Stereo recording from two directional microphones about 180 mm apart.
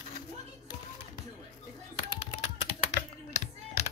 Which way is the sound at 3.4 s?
40° left (ahead or behind).